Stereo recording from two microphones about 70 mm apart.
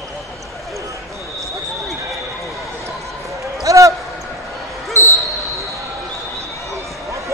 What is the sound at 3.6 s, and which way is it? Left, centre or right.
Basketball bounce, right.